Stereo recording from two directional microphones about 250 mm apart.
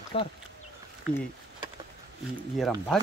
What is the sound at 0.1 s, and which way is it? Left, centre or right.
Speech, left.